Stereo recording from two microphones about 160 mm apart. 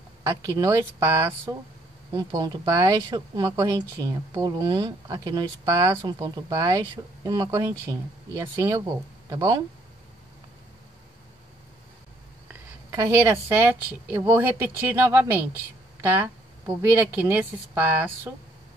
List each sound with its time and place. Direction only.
0.2 s a woman's voice: 20° right (ahead or behind)
12.9 s a woman's voice: 20° right (ahead or behind)